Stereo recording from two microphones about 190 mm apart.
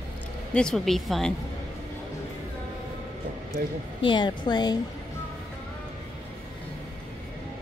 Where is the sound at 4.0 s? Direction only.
25° left (ahead or behind).